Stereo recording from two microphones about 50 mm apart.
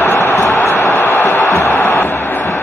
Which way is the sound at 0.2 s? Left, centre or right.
Left.